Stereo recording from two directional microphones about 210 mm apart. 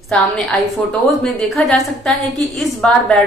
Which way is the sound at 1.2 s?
5° left (ahead or behind).